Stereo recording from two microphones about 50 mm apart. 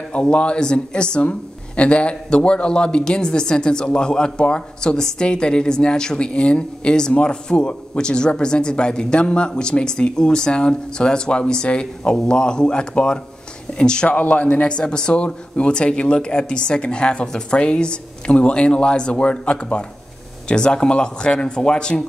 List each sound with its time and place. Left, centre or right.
0.1 s a man's voice: left
14.0 s a man's voice: left